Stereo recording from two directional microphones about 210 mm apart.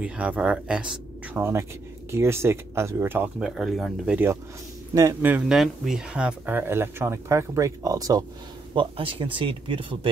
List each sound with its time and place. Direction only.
0.0 s speech: 5° right (ahead or behind); by 9.9 s 25° right (ahead or behind)